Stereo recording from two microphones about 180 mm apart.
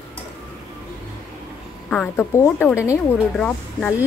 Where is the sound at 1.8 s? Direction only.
10° left (ahead or behind).